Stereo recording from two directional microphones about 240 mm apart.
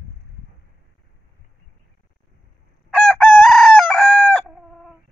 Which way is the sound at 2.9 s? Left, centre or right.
Centre.